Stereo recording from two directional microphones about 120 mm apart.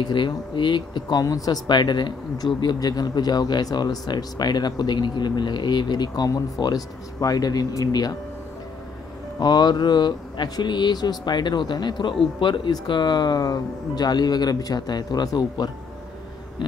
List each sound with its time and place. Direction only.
0.0 s speech: 40° left (ahead or behind)
9.4 s speech: 35° left (ahead or behind)